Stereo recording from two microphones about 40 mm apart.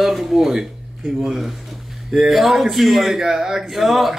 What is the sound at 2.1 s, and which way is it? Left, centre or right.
Speech, centre.